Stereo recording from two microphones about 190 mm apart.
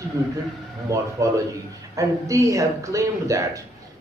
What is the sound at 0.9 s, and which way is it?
A man's voice, 15° right (ahead or behind).